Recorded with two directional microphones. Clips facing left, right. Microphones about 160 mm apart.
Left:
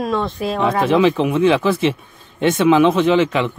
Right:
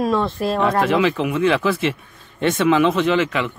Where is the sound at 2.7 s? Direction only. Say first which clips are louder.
Left 4 dB; 20° left (ahead or behind).